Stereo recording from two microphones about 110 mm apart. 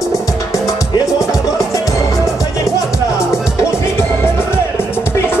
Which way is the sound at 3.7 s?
25° left (ahead or behind).